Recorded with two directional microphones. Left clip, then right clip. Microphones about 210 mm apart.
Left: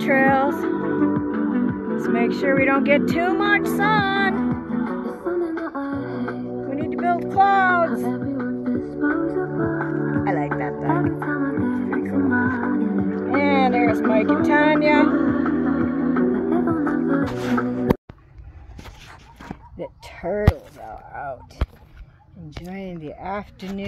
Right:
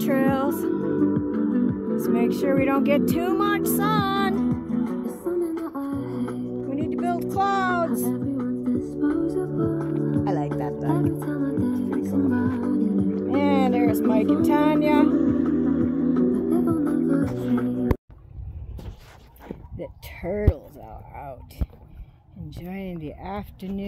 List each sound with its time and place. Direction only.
0.0 s music: 20° right (ahead or behind)
1.2 s music: 5° right (ahead or behind)
2.1 s speech: 20° right (ahead or behind)
4.4 s music: 55° right (ahead or behind)
6.7 s music: 15° right (ahead or behind)
7.9 s music: 50° right (ahead or behind)
10.2 s music: 15° right (ahead or behind)
10.8 s music: 65° right (ahead or behind)
12.8 s music: 20° right (ahead or behind)
14.0 s speech: 20° right (ahead or behind)
15.1 s music: 50° right (ahead or behind); by 17.7 s 65° right (ahead or behind)
19.8 s a sound: 10° right (ahead or behind)
21.1 s speech: 15° right (ahead or behind)
22.7 s speech: 15° right (ahead or behind)